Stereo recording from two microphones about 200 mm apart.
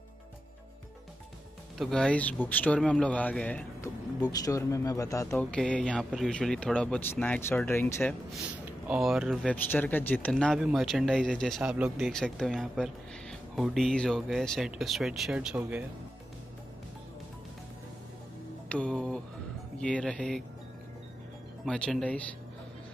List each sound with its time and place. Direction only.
1.8 s speech: 5° left (ahead or behind)
4.2 s speech: 20° left (ahead or behind)
5.3 s speech: 5° left (ahead or behind)
18.7 s speech: 5° left (ahead or behind)
21.6 s speech: 5° left (ahead or behind)